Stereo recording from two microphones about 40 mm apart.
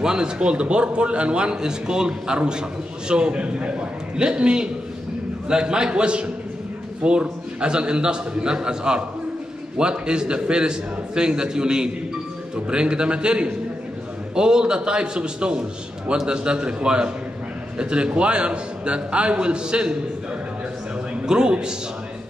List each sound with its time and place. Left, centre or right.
0.0 s a man's voice: centre
0.4 s a man's voice: right
21.3 s a man's voice: centre